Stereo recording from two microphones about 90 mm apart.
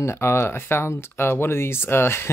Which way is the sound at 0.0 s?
30° left (ahead or behind).